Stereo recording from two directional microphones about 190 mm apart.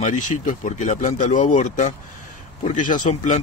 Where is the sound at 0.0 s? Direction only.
40° left (ahead or behind).